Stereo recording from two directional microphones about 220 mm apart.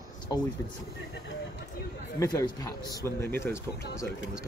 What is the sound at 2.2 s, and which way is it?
Speech, 15° left (ahead or behind).